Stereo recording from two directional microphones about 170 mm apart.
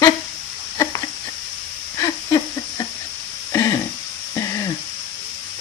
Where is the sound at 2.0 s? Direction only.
20° left (ahead or behind).